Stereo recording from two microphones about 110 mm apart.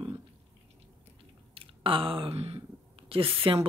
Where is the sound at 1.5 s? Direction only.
55° right (ahead or behind).